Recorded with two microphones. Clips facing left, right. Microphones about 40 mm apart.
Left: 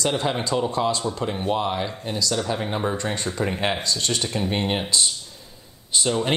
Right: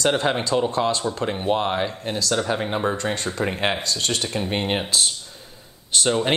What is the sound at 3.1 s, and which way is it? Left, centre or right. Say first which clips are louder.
Speech: right 1 dB; right.